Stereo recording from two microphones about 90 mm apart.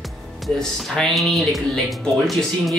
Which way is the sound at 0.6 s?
5° left (ahead or behind).